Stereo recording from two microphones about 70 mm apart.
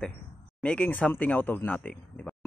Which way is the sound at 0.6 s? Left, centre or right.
Left.